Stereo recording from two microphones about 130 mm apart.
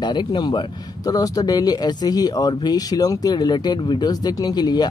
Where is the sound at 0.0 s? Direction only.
35° left (ahead or behind).